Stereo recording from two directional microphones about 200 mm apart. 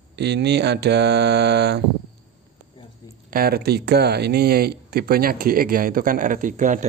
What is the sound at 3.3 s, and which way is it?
Speech, 50° right (ahead or behind).